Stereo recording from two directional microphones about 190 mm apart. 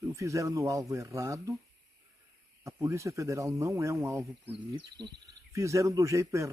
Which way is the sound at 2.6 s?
15° right (ahead or behind).